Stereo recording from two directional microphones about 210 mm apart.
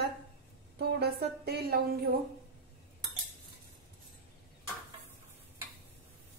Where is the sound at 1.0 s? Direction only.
50° right (ahead or behind).